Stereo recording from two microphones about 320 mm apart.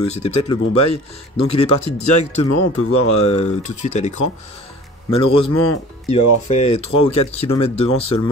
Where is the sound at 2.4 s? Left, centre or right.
Left.